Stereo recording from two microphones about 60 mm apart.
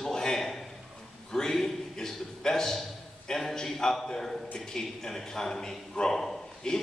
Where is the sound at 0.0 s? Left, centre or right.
Centre.